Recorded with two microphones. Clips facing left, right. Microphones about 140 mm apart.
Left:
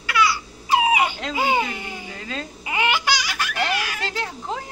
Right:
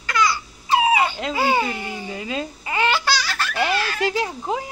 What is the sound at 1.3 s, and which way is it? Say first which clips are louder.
Speech: right 2 dB; 15° left (ahead or behind).